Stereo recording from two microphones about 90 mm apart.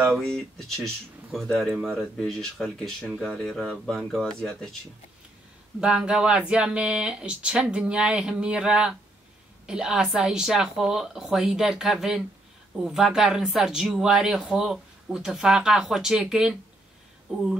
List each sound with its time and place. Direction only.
0.2 s speech: 5° left (ahead or behind)
5.8 s speech: 10° right (ahead or behind)